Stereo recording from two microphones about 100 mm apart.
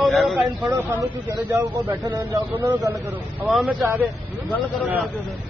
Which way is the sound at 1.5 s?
25° right (ahead or behind).